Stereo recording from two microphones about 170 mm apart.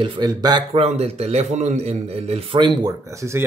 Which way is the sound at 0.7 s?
40° right (ahead or behind).